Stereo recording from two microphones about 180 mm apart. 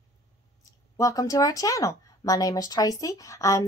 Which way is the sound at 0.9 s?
20° left (ahead or behind).